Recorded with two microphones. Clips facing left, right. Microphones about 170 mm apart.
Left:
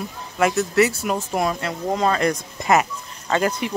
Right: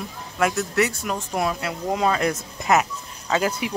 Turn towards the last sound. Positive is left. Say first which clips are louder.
# left 2 dB
turn(degrees=-5)  # may be behind; listen again after turning